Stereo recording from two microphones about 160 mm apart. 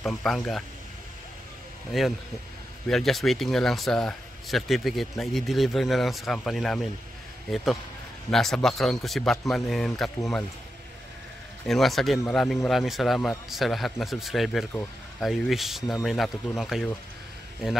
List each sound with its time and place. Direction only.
0.0 s a man's voice: 5° left (ahead or behind)
1.9 s a man's voice: centre (ahead or behind)
11.6 s a man's voice: centre (ahead or behind)